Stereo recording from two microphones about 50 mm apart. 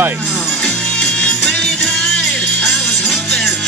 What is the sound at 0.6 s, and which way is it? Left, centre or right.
Music, centre.